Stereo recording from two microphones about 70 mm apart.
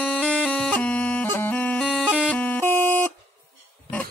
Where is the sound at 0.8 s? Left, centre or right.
Centre.